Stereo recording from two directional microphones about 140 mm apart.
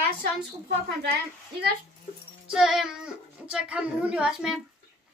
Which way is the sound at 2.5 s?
5° right (ahead or behind).